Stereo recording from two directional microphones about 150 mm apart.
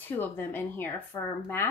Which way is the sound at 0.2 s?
15° left (ahead or behind).